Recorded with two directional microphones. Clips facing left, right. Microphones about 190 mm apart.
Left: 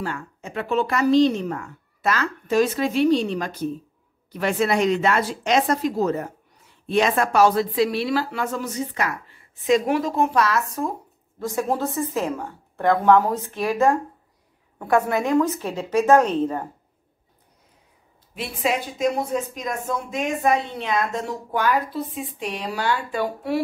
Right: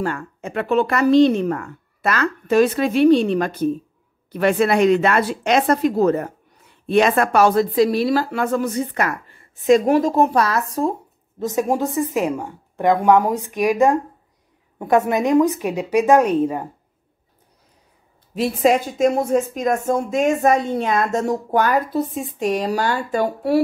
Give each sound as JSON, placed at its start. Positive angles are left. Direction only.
{"t": 0.0, "sound": "speech", "side_deg": -55}
{"t": 9.7, "sound": "speech", "side_deg": -45}
{"t": 18.3, "sound": "speech", "side_deg": -40}